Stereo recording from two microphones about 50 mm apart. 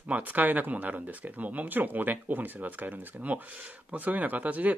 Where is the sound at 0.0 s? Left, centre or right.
Right.